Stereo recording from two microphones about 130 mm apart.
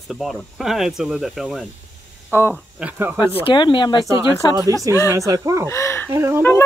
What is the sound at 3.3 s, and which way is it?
Speech, 40° left (ahead or behind).